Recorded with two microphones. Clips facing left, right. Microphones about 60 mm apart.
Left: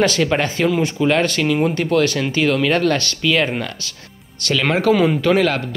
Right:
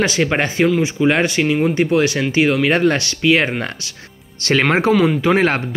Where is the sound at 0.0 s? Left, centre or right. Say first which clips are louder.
Even; centre.